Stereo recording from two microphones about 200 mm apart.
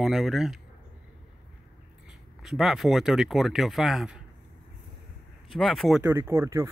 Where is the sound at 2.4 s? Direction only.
Centre (ahead or behind).